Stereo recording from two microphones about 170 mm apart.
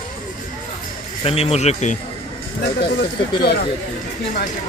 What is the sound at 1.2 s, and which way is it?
Speech, 35° left (ahead or behind).